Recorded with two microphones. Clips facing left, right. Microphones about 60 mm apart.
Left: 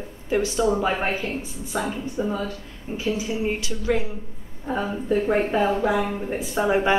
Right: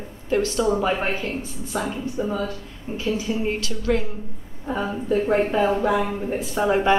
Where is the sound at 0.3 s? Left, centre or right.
Centre.